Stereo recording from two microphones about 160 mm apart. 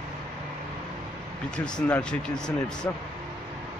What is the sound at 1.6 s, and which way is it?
Speech, 5° left (ahead or behind).